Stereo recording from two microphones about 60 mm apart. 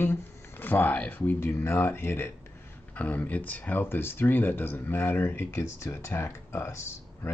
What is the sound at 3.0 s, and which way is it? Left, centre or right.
Speech, left.